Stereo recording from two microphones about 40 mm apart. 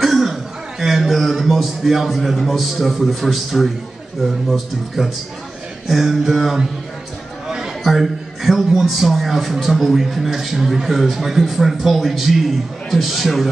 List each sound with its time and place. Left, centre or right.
0.0 s a man's voice: centre
7.4 s chatter: centre
7.8 s a man's voice: centre